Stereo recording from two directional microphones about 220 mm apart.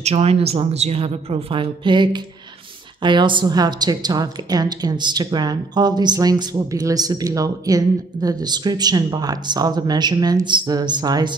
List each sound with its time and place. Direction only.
0.0 s a woman's voice: 30° right (ahead or behind)